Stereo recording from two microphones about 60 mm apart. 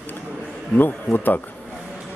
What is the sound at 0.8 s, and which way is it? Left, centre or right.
Speech, left.